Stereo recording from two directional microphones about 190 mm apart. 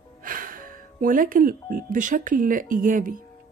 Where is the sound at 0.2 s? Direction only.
45° right (ahead or behind).